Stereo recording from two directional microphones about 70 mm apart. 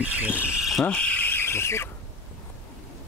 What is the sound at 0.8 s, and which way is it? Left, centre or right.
Speech, left.